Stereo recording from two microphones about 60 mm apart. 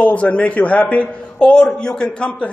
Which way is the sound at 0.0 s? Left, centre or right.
Left.